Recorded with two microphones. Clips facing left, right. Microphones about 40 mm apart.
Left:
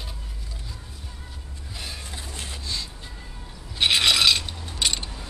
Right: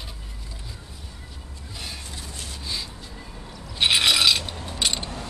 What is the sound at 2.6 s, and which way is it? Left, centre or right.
Music, centre.